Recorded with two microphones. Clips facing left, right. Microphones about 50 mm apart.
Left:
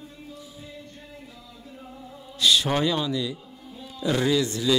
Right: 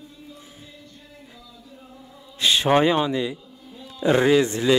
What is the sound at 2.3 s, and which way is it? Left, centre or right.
Speech, right.